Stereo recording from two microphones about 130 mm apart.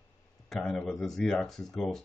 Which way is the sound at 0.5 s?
Centre (ahead or behind).